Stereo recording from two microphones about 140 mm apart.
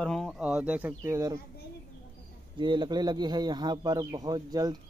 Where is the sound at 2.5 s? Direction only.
35° right (ahead or behind).